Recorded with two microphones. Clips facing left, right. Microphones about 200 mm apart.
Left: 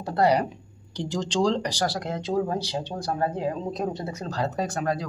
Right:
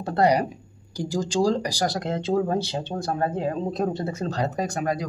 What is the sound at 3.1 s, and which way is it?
Speech, 50° right (ahead or behind).